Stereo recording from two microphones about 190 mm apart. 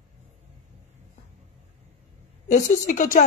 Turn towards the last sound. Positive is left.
turn(degrees=40)  # may be behind; listen again after turning